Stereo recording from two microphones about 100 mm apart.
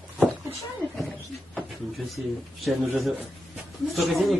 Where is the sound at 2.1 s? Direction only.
Centre (ahead or behind).